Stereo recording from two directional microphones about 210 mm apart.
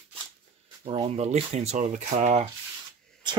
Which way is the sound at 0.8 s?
30° right (ahead or behind).